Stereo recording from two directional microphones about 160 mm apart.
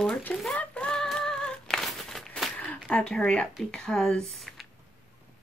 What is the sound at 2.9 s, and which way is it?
Speech, 5° left (ahead or behind).